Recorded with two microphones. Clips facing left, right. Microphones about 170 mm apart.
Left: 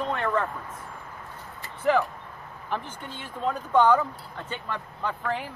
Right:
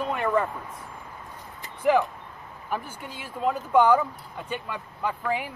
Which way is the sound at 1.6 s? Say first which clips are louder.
Right 2 dB; 15° right (ahead or behind).